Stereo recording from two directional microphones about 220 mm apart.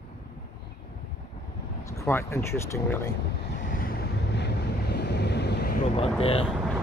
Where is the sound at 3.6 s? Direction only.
40° left (ahead or behind).